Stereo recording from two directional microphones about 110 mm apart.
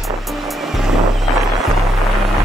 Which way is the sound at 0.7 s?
5° right (ahead or behind).